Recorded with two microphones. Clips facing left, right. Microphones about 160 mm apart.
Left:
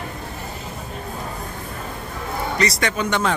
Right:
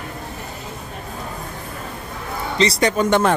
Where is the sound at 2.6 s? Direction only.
30° right (ahead or behind); by 3.3 s 50° right (ahead or behind).